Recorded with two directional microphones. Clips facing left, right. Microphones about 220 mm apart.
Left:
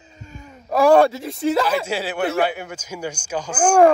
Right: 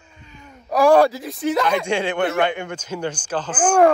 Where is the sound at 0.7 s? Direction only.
Centre (ahead or behind).